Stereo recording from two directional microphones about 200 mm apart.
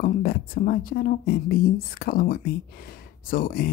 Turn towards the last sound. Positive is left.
turn(degrees=45)  # may be behind; listen again after turning